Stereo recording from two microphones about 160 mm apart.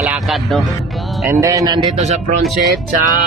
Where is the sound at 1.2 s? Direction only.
20° right (ahead or behind).